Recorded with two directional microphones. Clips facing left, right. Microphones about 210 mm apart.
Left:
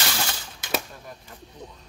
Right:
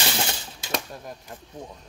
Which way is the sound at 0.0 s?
25° right (ahead or behind).